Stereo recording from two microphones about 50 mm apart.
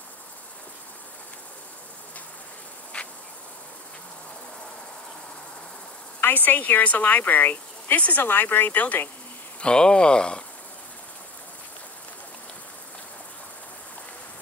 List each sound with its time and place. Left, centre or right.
2.9 s insect: left
6.2 s speech: left
9.6 s speech: centre